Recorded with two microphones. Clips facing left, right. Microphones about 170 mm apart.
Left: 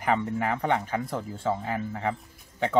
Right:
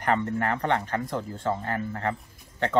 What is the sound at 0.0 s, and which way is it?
Speech, 5° left (ahead or behind).